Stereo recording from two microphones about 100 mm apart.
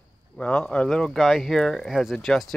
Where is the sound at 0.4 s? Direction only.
10° left (ahead or behind).